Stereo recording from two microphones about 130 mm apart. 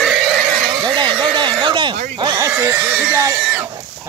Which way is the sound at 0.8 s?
35° right (ahead or behind).